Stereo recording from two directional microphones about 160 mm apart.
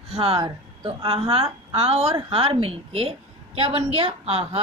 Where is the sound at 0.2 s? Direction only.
35° right (ahead or behind).